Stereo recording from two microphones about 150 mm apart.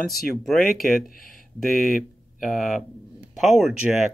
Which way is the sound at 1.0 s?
70° left (ahead or behind).